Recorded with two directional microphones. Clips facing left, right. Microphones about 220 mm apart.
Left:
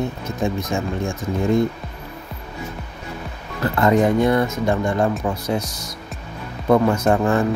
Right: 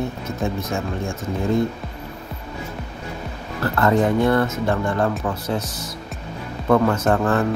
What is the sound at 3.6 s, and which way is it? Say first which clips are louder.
Speech: left 2 dB; 15° left (ahead or behind).